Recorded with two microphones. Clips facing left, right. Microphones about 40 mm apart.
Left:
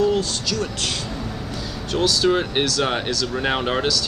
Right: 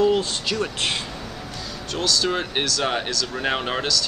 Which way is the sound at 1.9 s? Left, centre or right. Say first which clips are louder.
Left 4 dB; centre.